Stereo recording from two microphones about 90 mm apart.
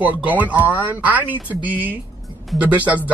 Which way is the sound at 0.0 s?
20° right (ahead or behind).